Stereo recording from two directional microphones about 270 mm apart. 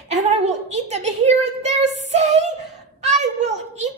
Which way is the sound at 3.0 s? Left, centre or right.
Right.